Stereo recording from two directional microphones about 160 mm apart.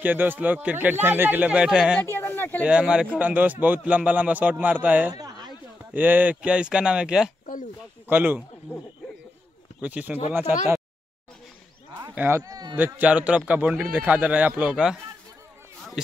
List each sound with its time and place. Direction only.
0.0 s a man's voice: 10° right (ahead or behind)
2.0 s speech: 10° left (ahead or behind)
2.6 s a man's voice: 5° right (ahead or behind)
5.1 s a sound: 25° right (ahead or behind)
5.9 s a man's voice: 10° right (ahead or behind)
9.8 s speech: 10° right (ahead or behind)
12.2 s speech: 15° right (ahead or behind)
12.7 s a man's voice: 10° right (ahead or behind)